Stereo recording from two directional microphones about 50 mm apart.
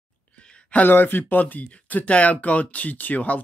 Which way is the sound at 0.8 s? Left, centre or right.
Left.